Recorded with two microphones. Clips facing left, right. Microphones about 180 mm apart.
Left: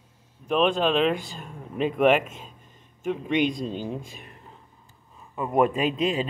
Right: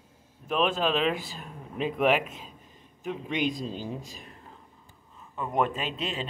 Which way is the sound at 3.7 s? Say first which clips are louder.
Left 4 dB; 55° left (ahead or behind).